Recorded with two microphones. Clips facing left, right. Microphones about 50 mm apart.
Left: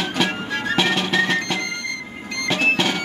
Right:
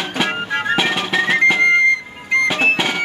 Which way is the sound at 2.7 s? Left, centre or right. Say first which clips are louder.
Right 2 dB; centre.